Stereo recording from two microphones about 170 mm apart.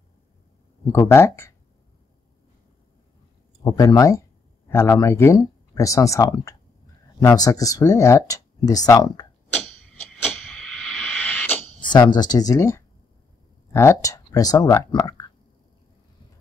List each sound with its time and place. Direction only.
0.9 s speech: 15° left (ahead or behind)
3.6 s speech: 20° left (ahead or behind)
9.5 s a sound: 5° left (ahead or behind)
11.8 s speech: 25° left (ahead or behind)